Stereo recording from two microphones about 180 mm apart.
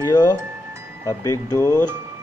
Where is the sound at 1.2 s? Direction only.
20° left (ahead or behind).